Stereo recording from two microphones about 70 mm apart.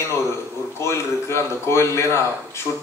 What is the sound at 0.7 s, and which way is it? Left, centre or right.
Speech, left.